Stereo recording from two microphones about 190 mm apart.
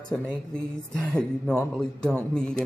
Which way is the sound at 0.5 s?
5° left (ahead or behind).